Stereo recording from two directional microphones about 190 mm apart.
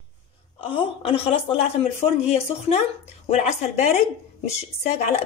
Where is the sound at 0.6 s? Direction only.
30° left (ahead or behind).